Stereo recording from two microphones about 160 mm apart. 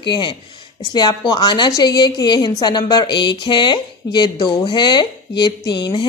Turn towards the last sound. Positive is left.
turn(degrees=30)  # may be behind; listen again after turning